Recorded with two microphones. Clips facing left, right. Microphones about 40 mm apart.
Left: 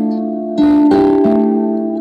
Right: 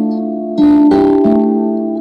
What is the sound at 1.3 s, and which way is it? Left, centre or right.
Music, centre.